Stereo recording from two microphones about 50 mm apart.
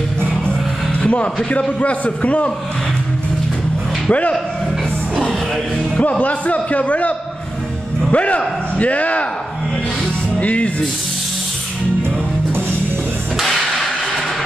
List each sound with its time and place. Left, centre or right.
1.0 s music: centre
1.8 s a man's voice: left
4.1 s a man's voice: left
6.0 s a man's voice: left
10.4 s a man's voice: left
13.4 s music: centre